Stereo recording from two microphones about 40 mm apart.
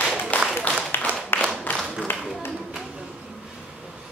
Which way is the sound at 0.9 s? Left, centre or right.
Left.